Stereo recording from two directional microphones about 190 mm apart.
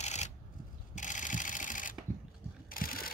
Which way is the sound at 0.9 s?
40° left (ahead or behind).